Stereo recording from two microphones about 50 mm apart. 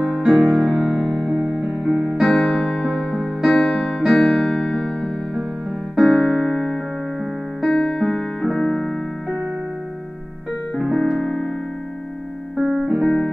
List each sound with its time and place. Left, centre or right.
0.0 s music: centre
0.8 s music: centre
2.2 s electric piano: centre
3.4 s music: centre
4.0 s keyboard: centre
7.6 s music: centre
8.5 s keyboard: centre
10.9 s keyboard: centre
12.6 s music: right